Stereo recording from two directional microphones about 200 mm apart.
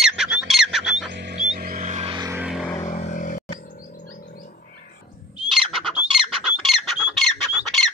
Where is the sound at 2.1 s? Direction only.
20° right (ahead or behind).